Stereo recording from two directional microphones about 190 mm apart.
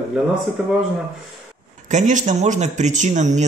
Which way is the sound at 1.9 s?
40° right (ahead or behind).